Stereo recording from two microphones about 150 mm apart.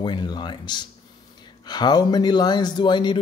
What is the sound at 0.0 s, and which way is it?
Speech, 30° left (ahead or behind).